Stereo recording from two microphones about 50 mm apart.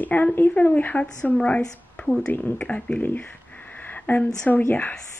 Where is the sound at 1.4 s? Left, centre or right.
Centre.